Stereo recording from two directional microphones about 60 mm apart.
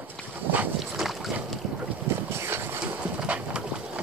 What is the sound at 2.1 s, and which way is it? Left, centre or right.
Boat, right.